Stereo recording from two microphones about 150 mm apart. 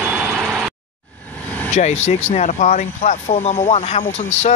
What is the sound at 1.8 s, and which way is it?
Speech, 50° left (ahead or behind).